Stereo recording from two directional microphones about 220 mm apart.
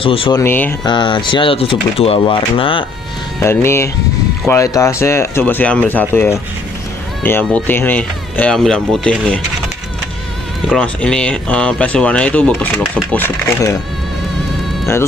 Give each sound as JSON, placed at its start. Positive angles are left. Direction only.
{"t": 0.0, "sound": "speech", "side_deg": 25}
{"t": 0.4, "sound": "speech", "side_deg": 10}
{"t": 0.8, "sound": "speech", "side_deg": 20}
{"t": 3.4, "sound": "speech", "side_deg": 10}
{"t": 10.7, "sound": "speech", "side_deg": 5}